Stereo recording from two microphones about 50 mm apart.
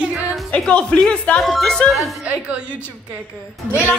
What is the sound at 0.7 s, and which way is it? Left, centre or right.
Speech, left.